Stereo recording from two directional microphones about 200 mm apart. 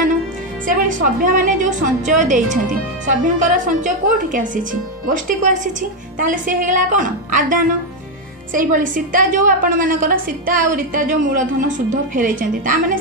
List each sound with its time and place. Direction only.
0.7 s a woman's voice: 45° right (ahead or behind)
8.5 s a woman's voice: 40° right (ahead or behind)